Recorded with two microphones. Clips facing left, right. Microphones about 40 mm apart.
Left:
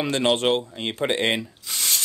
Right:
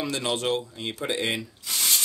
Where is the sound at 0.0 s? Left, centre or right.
Left.